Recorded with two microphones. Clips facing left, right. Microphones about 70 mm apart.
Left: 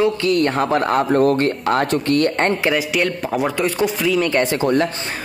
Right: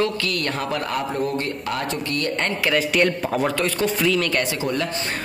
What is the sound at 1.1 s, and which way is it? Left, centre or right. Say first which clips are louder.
Speech: left 9 dB; left.